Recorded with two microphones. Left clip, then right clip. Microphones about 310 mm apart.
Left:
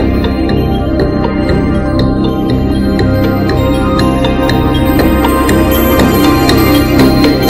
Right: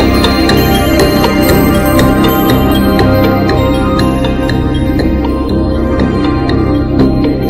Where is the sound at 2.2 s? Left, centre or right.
Right; by 5.6 s left.